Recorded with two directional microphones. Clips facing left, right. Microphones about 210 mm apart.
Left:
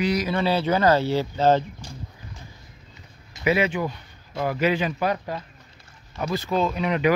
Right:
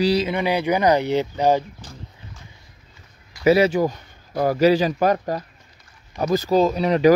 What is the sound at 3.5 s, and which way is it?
Speech, 40° right (ahead or behind).